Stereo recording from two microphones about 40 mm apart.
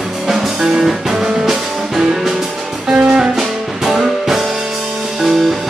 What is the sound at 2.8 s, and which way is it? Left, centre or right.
Music, right.